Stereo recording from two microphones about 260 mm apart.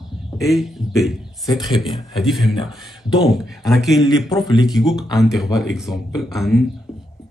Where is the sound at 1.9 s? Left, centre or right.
Centre.